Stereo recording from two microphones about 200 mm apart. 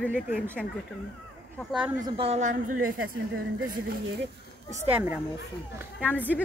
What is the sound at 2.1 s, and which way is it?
A woman's voice, 30° right (ahead or behind).